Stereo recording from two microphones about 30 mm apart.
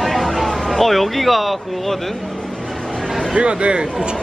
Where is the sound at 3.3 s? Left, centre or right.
Right.